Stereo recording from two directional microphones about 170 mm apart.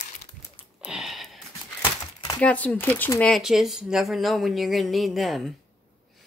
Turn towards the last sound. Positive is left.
turn(degrees=0)  # may be behind; listen again after turning